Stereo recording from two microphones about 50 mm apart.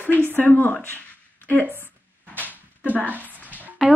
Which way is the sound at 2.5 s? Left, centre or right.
Left.